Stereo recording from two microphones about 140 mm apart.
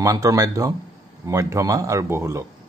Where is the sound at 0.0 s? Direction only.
25° right (ahead or behind).